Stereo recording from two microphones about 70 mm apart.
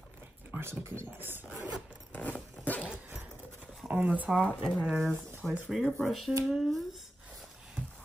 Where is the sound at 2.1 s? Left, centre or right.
Left.